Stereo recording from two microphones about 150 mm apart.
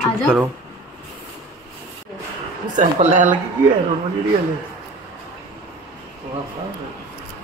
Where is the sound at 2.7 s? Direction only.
55° right (ahead or behind).